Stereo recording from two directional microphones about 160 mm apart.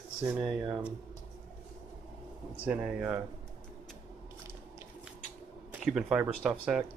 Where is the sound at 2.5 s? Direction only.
10° right (ahead or behind).